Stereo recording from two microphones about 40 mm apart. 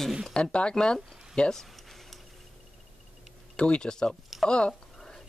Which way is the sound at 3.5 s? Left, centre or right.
Left.